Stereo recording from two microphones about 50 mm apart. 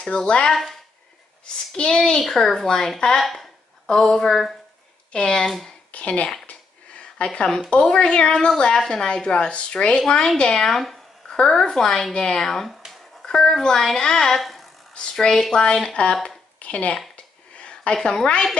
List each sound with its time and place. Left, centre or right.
0.5 s a woman's voice: centre
3.3 s a sound: centre
3.9 s a woman's voice: centre
5.9 s a woman's voice: left
10.7 s a sound: centre
11.3 s a woman's voice: centre
15.5 s speech: centre
17.6 s a sound: left
18.0 s a woman's voice: centre